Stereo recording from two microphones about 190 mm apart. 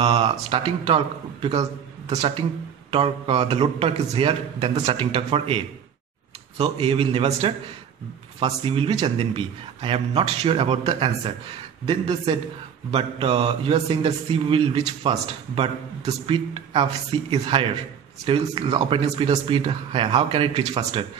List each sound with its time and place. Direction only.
0.0 s speech: 30° right (ahead or behind)
6.6 s speech: 30° right (ahead or behind)